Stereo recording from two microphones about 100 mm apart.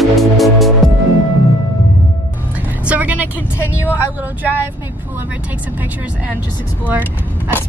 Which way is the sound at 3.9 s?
15° right (ahead or behind).